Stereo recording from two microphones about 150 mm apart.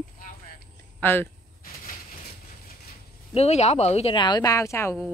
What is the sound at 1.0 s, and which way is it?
Speech, 15° left (ahead or behind).